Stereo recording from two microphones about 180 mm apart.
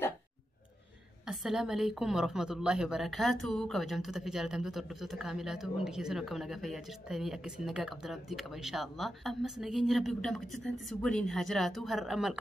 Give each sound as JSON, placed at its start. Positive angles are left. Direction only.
{"t": 1.2, "sound": "a woman's voice", "side_deg": 0}